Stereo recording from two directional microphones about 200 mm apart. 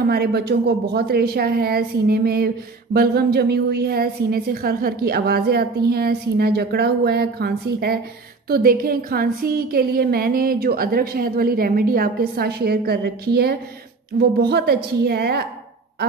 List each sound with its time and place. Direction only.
0.0 s a woman's voice: 55° right (ahead or behind)